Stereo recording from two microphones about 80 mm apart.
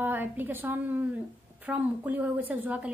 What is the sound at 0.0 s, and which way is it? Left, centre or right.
A woman's voice, right.